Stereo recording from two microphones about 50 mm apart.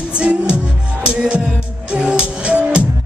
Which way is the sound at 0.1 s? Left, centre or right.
Right.